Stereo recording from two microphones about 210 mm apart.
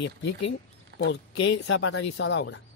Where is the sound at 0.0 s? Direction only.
60° left (ahead or behind).